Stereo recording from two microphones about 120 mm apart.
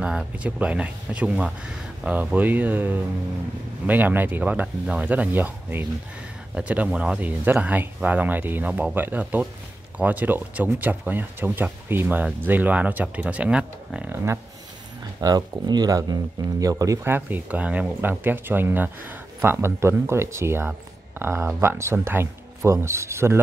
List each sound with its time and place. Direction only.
0.0 s speech: 10° right (ahead or behind)
15.1 s speech: 30° right (ahead or behind)